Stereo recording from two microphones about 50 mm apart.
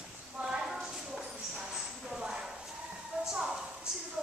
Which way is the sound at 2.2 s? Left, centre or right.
Centre.